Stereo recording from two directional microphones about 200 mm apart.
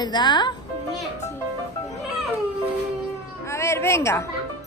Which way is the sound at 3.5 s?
15° left (ahead or behind).